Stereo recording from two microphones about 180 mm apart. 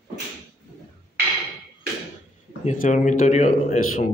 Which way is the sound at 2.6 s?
40° left (ahead or behind).